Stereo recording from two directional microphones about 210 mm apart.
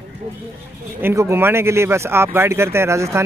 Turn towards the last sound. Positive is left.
turn(degrees=-15)  # may be behind; listen again after turning